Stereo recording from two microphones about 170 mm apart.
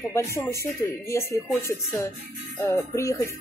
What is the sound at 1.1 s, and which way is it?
Speech, 15° left (ahead or behind).